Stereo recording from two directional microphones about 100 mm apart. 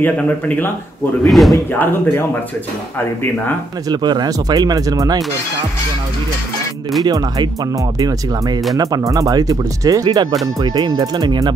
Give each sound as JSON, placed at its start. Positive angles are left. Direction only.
{"t": 1.2, "sound": "speech", "side_deg": 0}
{"t": 1.7, "sound": "speech", "side_deg": 20}
{"t": 3.9, "sound": "speech", "side_deg": -45}
{"t": 7.1, "sound": "speech", "side_deg": -40}